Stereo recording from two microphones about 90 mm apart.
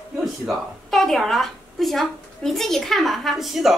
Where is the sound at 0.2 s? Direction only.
Centre (ahead or behind).